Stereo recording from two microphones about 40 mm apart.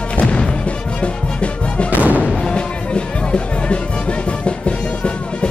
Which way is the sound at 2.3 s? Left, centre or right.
Centre.